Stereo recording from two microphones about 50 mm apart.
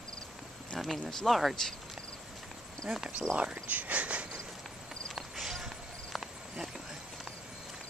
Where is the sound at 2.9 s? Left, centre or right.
Centre.